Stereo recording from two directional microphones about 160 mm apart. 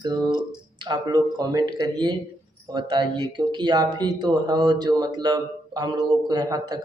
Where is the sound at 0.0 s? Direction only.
25° right (ahead or behind).